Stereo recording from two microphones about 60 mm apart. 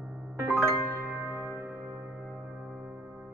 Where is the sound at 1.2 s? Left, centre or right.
Right.